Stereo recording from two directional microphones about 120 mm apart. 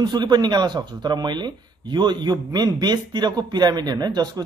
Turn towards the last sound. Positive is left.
turn(degrees=-35)  # may be behind; listen again after turning